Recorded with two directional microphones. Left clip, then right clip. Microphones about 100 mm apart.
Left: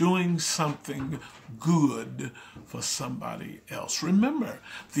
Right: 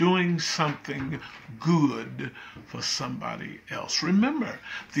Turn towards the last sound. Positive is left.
turn(degrees=30)  # may be behind; listen again after turning